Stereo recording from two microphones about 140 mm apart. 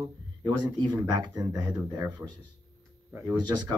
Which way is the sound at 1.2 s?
25° right (ahead or behind).